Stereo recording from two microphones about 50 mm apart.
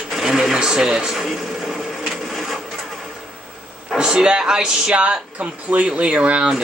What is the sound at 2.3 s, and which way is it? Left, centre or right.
Printer, centre.